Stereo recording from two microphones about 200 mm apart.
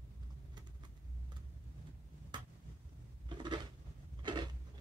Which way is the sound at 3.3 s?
20° right (ahead or behind).